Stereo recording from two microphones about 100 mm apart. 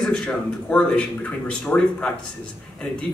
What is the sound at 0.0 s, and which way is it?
Speech, 10° left (ahead or behind).